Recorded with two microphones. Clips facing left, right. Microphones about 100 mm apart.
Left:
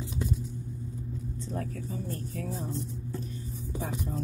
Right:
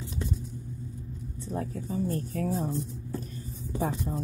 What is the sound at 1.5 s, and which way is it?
Speech, 25° right (ahead or behind).